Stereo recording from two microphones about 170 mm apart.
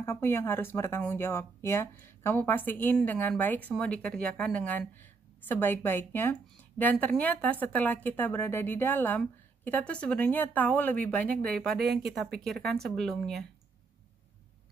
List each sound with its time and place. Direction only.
0.0 s speech: 15° left (ahead or behind)
11.8 s speech: 70° right (ahead or behind)
12.1 s speech: centre (ahead or behind)